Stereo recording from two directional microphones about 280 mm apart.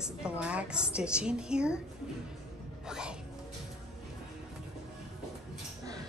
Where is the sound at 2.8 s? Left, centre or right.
Centre.